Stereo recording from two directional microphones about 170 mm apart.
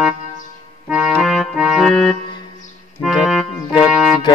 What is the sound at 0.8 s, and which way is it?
Accordion, 5° right (ahead or behind).